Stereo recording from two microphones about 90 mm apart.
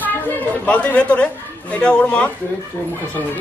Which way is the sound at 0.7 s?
15° left (ahead or behind).